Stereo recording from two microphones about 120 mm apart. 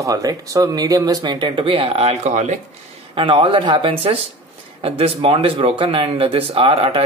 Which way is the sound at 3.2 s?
45° right (ahead or behind).